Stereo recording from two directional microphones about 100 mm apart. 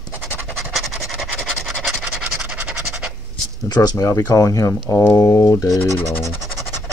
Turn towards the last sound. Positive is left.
turn(degrees=25)  # may be behind; listen again after turning